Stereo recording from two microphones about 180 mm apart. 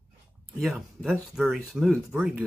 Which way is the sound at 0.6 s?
5° right (ahead or behind).